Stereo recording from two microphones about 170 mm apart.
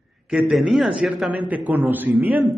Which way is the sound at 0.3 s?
Centre (ahead or behind).